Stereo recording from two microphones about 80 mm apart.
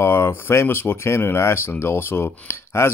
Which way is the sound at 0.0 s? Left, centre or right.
Left.